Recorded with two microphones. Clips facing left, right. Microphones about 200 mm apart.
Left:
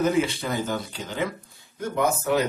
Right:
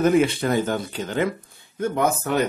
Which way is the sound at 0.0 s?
55° right (ahead or behind).